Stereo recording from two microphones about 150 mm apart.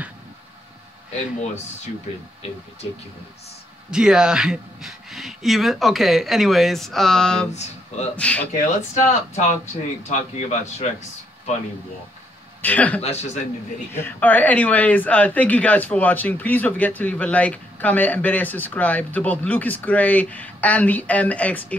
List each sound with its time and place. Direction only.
3.9 s speech: 5° right (ahead or behind)
7.5 s speech: 45° left (ahead or behind)
8.2 s speech: 10° left (ahead or behind)
8.5 s speech: 55° left (ahead or behind)
12.6 s speech: 10° left (ahead or behind)
13.0 s speech: 45° left (ahead or behind)
13.9 s speech: 10° left (ahead or behind)